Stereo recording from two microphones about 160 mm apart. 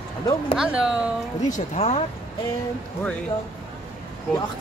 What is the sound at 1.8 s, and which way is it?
Speech, 40° left (ahead or behind).